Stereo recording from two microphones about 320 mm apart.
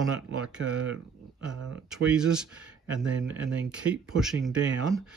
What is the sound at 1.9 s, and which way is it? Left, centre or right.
Speech, centre.